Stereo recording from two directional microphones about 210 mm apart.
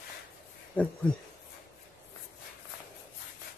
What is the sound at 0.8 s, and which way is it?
Speech, 5° left (ahead or behind).